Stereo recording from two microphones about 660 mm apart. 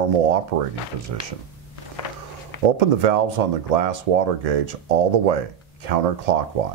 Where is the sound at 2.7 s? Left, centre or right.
Right.